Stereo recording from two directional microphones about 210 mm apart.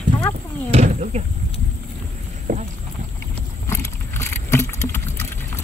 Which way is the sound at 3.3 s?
10° left (ahead or behind).